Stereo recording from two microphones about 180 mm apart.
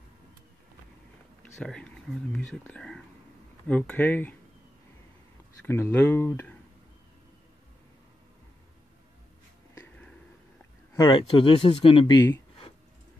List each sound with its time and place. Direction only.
1.4 s speech: 5° left (ahead or behind)
5.7 s speech: 15° left (ahead or behind)
9.8 s a sound: 5° left (ahead or behind)
11.0 s speech: 25° left (ahead or behind)